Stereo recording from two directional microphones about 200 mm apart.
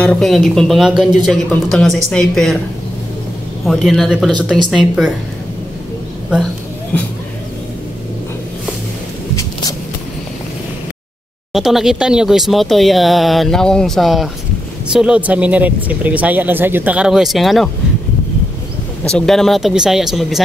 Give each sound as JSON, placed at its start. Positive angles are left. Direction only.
{"t": 0.0, "sound": "speech", "side_deg": 5}
{"t": 3.6, "sound": "speech", "side_deg": 0}
{"t": 9.3, "sound": "a sound", "side_deg": 15}
{"t": 11.5, "sound": "speech", "side_deg": 0}
{"t": 19.0, "sound": "speech", "side_deg": 5}